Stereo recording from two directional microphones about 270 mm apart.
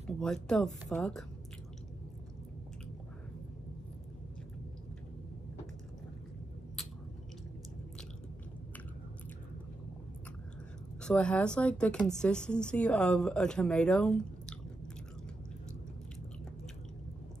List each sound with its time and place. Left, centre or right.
0.2 s a woman's voice: centre
11.0 s a woman's voice: centre